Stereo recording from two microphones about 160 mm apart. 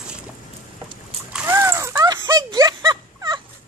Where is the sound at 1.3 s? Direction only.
10° right (ahead or behind).